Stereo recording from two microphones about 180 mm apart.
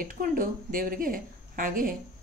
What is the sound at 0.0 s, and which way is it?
Speech, 50° right (ahead or behind).